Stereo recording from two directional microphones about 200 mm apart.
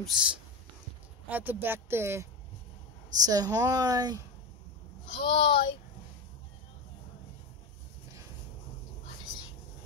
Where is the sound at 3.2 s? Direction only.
20° right (ahead or behind).